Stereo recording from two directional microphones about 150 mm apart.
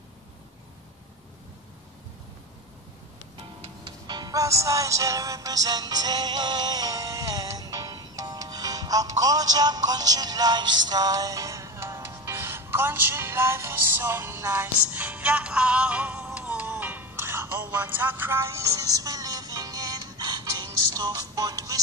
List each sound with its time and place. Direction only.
3.8 s music: 30° right (ahead or behind)